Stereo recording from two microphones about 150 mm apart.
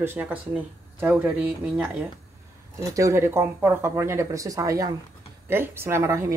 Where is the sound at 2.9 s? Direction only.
20° right (ahead or behind).